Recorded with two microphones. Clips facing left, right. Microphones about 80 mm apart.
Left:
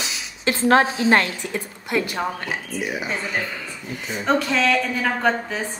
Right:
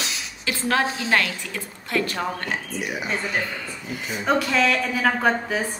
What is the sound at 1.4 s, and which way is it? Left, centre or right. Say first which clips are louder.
Speech: left 5 dB; centre.